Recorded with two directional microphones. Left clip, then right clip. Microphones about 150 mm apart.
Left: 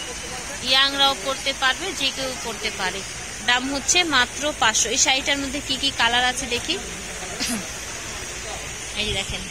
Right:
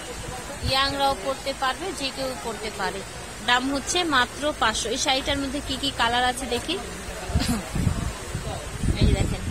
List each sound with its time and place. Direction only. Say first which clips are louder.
0.7 s speech: left 4 dB; 5° right (ahead or behind); by 6.8 s 20° right (ahead or behind)